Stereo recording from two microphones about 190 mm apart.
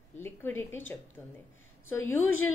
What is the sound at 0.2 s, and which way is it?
A woman's voice, 10° left (ahead or behind).